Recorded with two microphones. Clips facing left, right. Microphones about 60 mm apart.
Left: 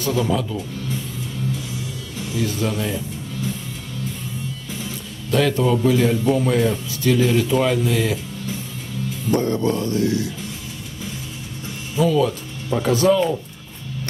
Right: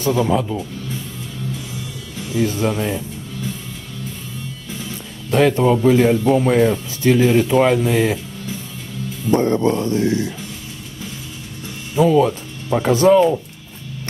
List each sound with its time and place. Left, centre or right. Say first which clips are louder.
0.0 s speech: right 4 dB; right
2.3 s speech: right 4 dB; right
5.3 s speech: right 4 dB; right
9.3 s speech: right 4 dB; right
11.9 s speech: right 4 dB; right